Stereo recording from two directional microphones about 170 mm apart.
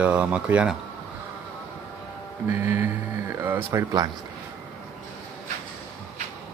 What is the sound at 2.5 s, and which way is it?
Speech, 15° right (ahead or behind).